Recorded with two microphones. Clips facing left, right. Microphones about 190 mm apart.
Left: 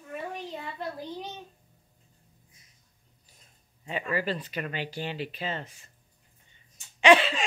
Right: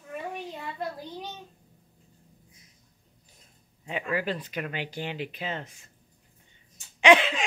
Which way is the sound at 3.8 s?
10° right (ahead or behind).